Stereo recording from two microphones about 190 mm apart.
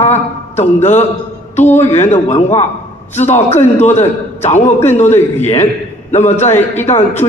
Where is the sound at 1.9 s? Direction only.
35° left (ahead or behind).